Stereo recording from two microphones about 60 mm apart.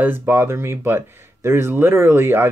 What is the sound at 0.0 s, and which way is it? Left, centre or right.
Speech, right.